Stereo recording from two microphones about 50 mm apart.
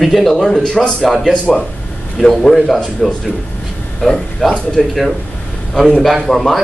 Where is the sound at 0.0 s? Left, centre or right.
Centre.